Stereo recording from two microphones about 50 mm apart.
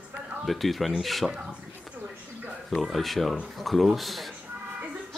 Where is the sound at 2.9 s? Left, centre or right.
Centre.